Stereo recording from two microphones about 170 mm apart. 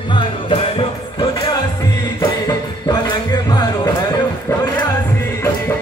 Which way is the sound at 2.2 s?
25° left (ahead or behind).